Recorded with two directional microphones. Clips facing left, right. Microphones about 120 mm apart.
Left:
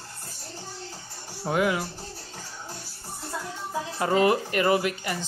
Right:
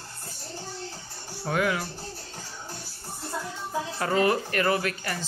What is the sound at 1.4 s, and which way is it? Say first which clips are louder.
Speech: left 2 dB; 20° left (ahead or behind).